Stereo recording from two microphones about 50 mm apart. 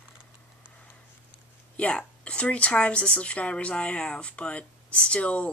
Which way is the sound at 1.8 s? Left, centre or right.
Left.